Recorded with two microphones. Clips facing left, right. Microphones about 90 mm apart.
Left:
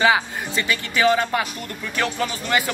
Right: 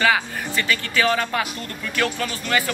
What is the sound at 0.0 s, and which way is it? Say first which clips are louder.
Speech: left 2 dB; 20° left (ahead or behind).